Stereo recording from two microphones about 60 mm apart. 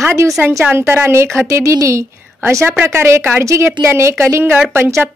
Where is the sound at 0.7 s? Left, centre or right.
Right.